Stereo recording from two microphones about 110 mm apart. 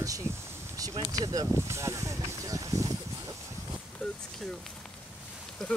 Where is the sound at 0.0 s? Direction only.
30° right (ahead or behind).